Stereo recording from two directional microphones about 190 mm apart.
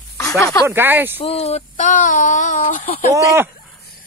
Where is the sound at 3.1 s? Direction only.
15° right (ahead or behind).